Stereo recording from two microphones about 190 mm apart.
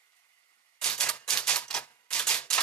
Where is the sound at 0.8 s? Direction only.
5° left (ahead or behind).